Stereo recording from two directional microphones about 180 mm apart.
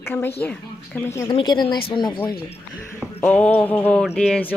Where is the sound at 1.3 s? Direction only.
25° left (ahead or behind).